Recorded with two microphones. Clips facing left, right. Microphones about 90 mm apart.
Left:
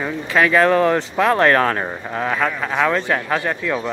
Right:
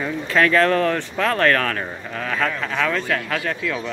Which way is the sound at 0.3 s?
10° left (ahead or behind).